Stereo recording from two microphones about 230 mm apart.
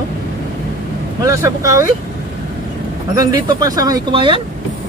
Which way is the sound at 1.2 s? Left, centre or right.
Centre.